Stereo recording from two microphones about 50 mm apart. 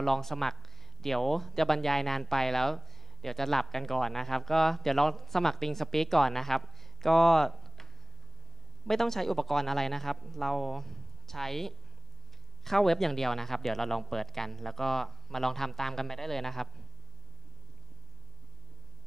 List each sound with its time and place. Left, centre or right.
0.0 s speech: centre